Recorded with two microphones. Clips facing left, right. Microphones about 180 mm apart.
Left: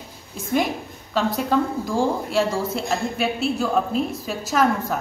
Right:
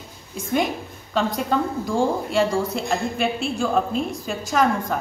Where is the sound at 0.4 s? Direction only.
Centre (ahead or behind).